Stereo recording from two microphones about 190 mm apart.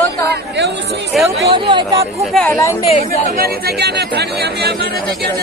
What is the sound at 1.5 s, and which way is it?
Speech, 25° right (ahead or behind).